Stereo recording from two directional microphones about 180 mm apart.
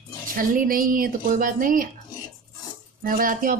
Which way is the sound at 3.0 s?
50° right (ahead or behind).